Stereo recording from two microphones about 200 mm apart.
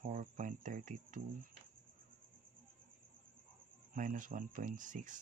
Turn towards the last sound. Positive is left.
turn(degrees=-40)  # may be behind; listen again after turning